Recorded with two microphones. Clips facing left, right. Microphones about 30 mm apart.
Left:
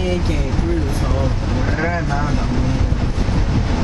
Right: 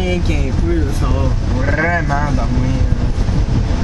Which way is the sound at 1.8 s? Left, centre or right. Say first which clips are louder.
Right 6 dB; right.